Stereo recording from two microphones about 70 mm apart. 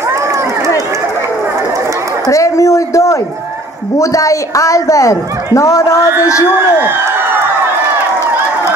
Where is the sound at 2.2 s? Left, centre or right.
Left.